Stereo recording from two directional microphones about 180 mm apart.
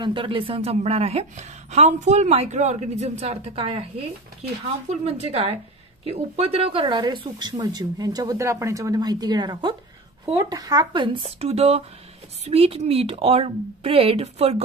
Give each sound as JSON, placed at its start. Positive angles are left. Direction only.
{"t": 0.0, "sound": "a woman's voice", "side_deg": -30}